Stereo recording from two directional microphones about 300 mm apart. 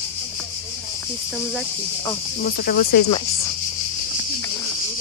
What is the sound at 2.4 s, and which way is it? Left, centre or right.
Speech, left.